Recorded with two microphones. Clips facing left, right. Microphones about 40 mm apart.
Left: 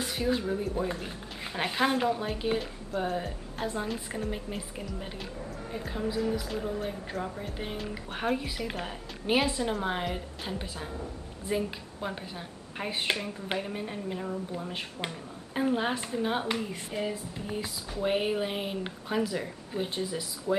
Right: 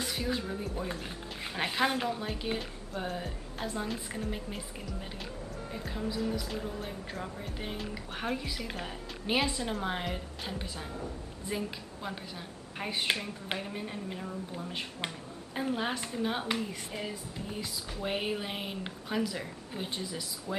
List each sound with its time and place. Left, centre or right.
0.0 s a woman's voice: centre